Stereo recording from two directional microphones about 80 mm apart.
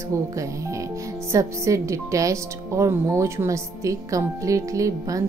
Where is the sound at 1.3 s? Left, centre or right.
Right.